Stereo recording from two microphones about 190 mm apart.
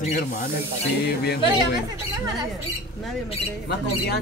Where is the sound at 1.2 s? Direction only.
55° left (ahead or behind).